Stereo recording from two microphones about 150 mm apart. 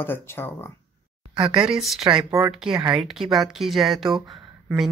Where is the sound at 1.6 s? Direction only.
5° right (ahead or behind).